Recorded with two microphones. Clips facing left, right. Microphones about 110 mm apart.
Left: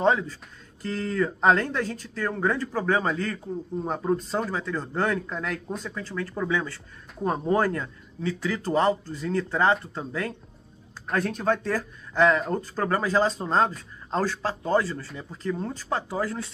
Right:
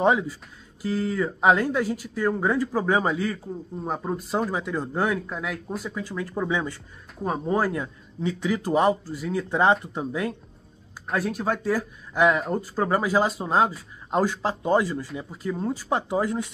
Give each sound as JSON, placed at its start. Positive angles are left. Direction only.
{"t": 0.0, "sound": "speech", "side_deg": -15}
{"t": 7.2, "sound": "speech", "side_deg": -5}